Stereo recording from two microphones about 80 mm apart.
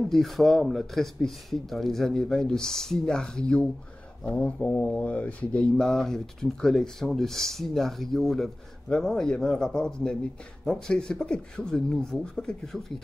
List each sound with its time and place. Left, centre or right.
0.0 s speech: centre